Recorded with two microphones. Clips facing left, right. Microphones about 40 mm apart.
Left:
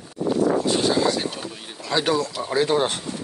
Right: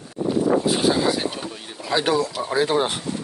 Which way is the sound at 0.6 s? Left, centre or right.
Centre.